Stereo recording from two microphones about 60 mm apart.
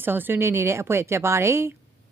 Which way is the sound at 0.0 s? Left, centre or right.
Right.